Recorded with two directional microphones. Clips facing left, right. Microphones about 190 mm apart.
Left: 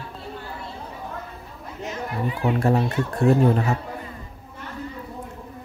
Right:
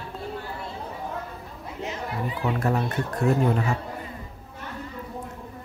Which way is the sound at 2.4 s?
25° left (ahead or behind).